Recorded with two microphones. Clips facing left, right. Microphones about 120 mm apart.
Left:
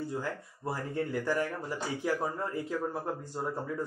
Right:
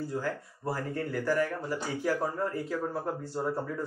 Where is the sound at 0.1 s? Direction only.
15° left (ahead or behind).